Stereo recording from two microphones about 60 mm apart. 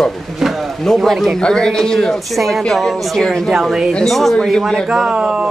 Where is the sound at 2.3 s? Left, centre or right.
Centre.